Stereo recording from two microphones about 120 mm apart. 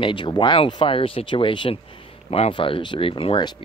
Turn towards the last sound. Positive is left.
turn(degrees=45)  # may be behind; listen again after turning